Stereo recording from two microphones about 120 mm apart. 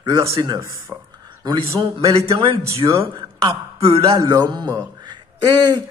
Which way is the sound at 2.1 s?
55° right (ahead or behind).